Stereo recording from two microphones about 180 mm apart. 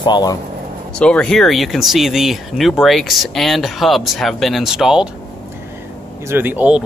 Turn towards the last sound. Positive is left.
turn(degrees=-5)  # may be behind; listen again after turning